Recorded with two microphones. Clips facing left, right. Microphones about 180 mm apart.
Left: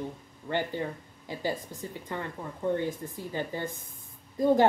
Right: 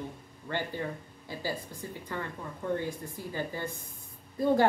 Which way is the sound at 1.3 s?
15° left (ahead or behind).